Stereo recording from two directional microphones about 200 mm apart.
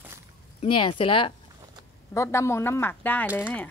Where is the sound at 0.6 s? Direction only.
25° left (ahead or behind).